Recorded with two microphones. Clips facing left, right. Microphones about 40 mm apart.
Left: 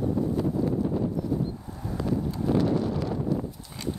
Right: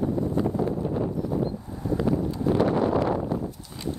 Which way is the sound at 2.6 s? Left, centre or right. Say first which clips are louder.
Right 5 dB; right.